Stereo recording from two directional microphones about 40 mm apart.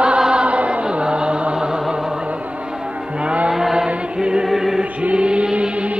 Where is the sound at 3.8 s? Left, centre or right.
Right.